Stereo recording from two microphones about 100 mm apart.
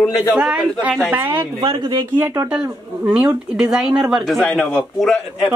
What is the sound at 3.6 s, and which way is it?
A man's voice, 5° right (ahead or behind).